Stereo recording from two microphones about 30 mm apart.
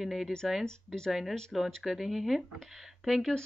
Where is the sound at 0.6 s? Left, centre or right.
Left.